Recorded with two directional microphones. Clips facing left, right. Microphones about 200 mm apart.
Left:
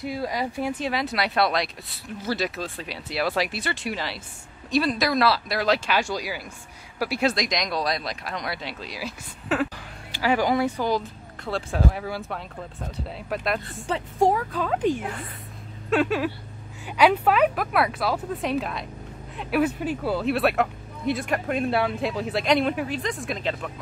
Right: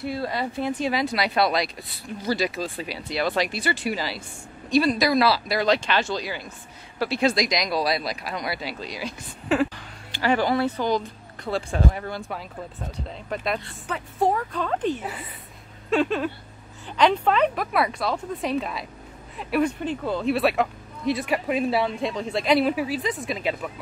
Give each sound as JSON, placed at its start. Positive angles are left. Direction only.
{"t": 0.0, "sound": "speech", "side_deg": 15}
{"t": 13.9, "sound": "a woman's voice", "side_deg": 30}
{"t": 14.2, "sound": "speech", "side_deg": 5}